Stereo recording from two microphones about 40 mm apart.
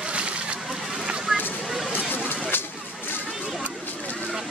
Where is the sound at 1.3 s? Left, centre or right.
Centre.